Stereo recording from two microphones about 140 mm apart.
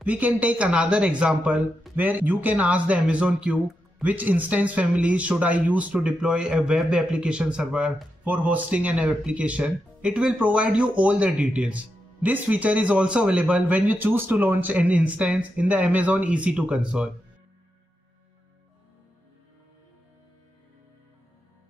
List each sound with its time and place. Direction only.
0.0 s speech: 10° right (ahead or behind)